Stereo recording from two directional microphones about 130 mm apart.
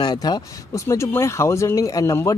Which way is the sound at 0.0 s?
35° left (ahead or behind).